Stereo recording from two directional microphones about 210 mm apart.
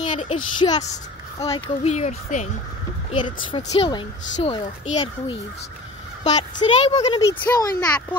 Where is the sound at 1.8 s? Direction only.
30° left (ahead or behind).